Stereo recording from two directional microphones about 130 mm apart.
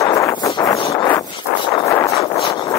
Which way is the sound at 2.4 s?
35° left (ahead or behind).